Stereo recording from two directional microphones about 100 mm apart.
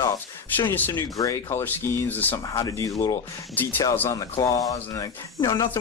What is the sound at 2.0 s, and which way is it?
Speech, 20° left (ahead or behind).